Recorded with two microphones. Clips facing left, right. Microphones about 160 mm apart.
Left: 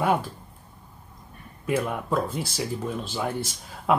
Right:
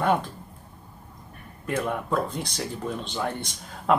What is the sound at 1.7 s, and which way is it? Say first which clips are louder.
Speech: left 1 dB; 5° left (ahead or behind).